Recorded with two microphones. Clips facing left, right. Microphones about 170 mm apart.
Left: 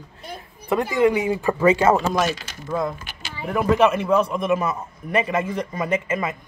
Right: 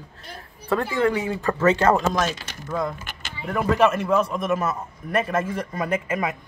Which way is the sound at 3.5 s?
5° left (ahead or behind).